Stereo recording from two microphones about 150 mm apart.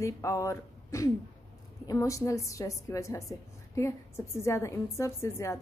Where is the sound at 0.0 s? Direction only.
20° left (ahead or behind).